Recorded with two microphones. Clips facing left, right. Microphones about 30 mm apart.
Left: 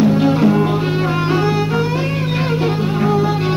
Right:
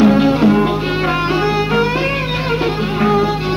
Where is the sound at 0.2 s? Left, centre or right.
Right.